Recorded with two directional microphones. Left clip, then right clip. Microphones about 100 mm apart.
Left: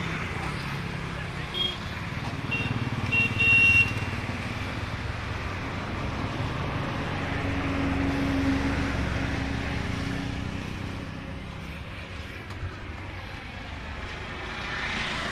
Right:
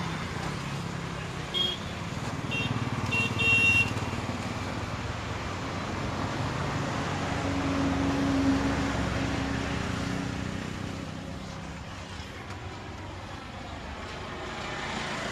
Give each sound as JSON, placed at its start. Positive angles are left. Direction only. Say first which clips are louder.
{"t": 1.6, "sound": "vehicle", "louder": "even", "side_deg": 15}
{"t": 2.5, "sound": "vehicle", "louder": "left 1 dB", "side_deg": 0}
{"t": 7.2, "sound": "vehicle", "louder": "even", "side_deg": 0}
{"t": 14.6, "sound": "vehicle", "louder": "left 5 dB", "side_deg": -5}